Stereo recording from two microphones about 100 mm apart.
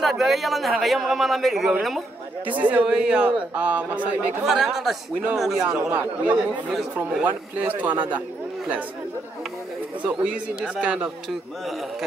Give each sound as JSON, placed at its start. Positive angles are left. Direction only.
{"t": 0.0, "sound": "a man's voice", "side_deg": 0}
{"t": 2.5, "sound": "a man's voice", "side_deg": -15}
{"t": 4.5, "sound": "a man's voice", "side_deg": -5}
{"t": 5.9, "sound": "a man's voice", "side_deg": -15}
{"t": 10.0, "sound": "a man's voice", "side_deg": -10}